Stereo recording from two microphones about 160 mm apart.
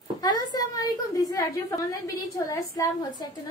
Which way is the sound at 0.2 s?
25° left (ahead or behind).